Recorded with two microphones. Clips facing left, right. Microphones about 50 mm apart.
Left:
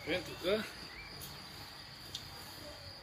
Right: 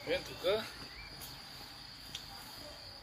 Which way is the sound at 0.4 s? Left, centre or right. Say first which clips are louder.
Right 1 dB; centre.